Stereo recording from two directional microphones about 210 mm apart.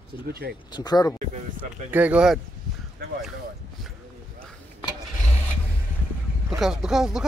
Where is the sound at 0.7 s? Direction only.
20° left (ahead or behind).